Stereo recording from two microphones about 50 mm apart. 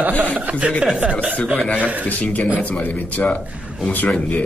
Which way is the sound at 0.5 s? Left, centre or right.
Right.